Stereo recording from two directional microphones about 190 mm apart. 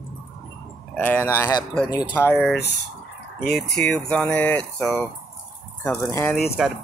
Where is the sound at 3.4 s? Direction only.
55° left (ahead or behind).